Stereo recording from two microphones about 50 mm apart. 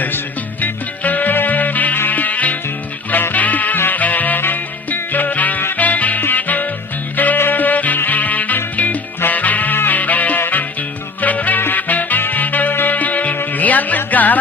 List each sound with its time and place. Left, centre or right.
0.0 s music: left